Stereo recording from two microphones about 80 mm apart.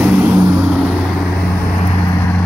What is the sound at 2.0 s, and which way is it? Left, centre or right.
Vehicle, left.